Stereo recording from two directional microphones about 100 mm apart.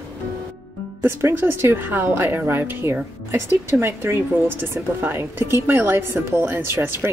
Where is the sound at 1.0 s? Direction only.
20° right (ahead or behind).